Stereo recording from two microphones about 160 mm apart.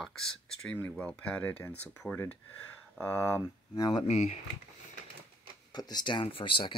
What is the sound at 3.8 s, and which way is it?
Speech, 25° left (ahead or behind).